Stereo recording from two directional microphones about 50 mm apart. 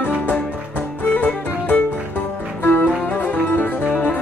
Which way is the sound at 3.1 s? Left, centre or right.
Left.